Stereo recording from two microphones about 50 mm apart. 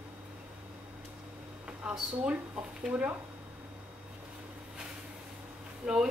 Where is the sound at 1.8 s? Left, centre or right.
Right.